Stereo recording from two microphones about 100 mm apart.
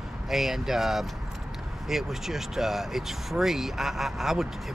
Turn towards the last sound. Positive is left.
turn(degrees=-5)  # may be behind; listen again after turning